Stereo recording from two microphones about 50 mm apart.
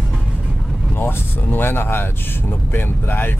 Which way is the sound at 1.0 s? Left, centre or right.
Left.